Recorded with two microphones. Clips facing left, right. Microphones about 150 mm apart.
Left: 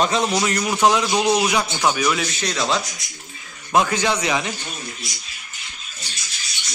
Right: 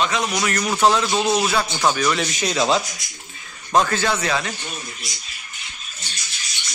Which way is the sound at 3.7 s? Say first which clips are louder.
Even; 10° left (ahead or behind).